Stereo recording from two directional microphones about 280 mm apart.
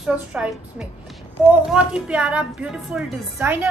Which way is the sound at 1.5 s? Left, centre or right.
Centre.